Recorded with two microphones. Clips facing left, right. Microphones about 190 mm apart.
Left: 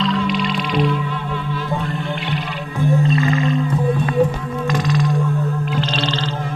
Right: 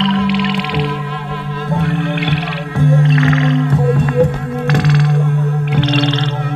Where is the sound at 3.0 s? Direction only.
90° right; by 5.2 s 70° right (ahead or behind).